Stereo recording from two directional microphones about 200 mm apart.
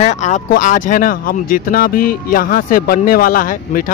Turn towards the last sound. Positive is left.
turn(degrees=45)  # may be behind; listen again after turning